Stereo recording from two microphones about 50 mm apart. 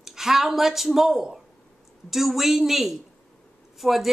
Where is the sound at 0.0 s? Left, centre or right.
Centre.